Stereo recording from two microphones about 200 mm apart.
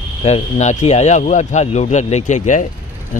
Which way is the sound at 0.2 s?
35° left (ahead or behind).